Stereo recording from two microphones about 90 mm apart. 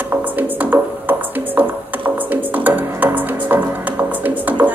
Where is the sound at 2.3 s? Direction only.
20° right (ahead or behind).